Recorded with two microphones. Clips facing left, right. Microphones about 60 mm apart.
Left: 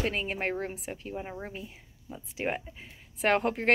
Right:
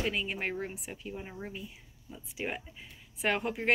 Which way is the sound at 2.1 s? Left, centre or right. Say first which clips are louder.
Left 5 dB; left.